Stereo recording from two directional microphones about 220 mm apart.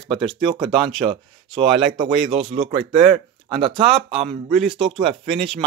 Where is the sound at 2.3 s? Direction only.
25° right (ahead or behind).